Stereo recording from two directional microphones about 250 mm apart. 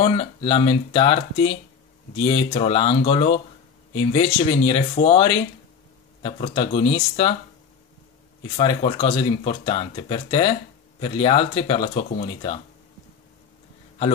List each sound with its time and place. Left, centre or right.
0.0 s speech: left
8.5 s speech: left